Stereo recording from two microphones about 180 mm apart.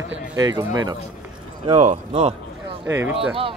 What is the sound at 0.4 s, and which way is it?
Speech, 20° right (ahead or behind).